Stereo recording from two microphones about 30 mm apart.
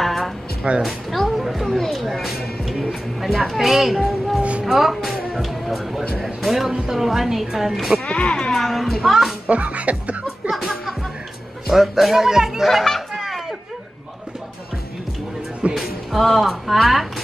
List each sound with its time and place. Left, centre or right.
0.0 s music: centre
0.8 s a woman's voice: centre
4.4 s speech: right
4.6 s music: centre
6.2 s a woman's voice: centre
8.0 s speech: left
8.5 s a woman's voice: centre
9.5 s speech: right
10.5 s music: centre
11.7 s a woman's voice: centre
13.1 s children playing: centre
15.7 s music: centre
16.7 s speech: centre